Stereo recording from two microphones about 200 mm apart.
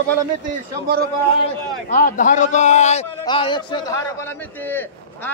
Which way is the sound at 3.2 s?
25° left (ahead or behind).